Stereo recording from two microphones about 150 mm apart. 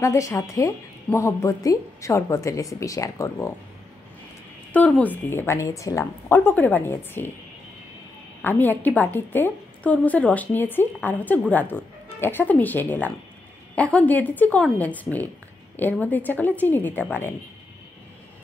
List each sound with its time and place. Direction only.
0.0 s a woman's voice: 20° left (ahead or behind)
4.7 s a woman's voice: 10° left (ahead or behind)
8.4 s a woman's voice: 10° left (ahead or behind)